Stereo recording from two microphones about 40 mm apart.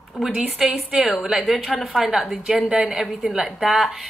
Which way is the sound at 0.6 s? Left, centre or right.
Centre.